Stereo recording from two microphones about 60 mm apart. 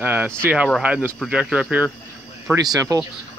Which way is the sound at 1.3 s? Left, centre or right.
Centre.